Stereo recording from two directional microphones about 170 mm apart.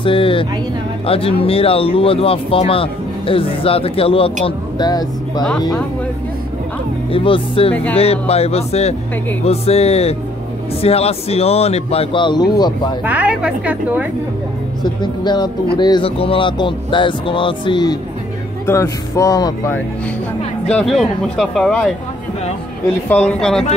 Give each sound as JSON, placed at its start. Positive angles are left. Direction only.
{"t": 0.0, "sound": "speech", "side_deg": 30}
{"t": 7.1, "sound": "speech", "side_deg": 30}
{"t": 13.0, "sound": "a woman's voice", "side_deg": -10}
{"t": 14.8, "sound": "speech", "side_deg": 25}
{"t": 18.7, "sound": "speech", "side_deg": 15}
{"t": 20.7, "sound": "speech", "side_deg": 0}
{"t": 23.0, "sound": "speech", "side_deg": 10}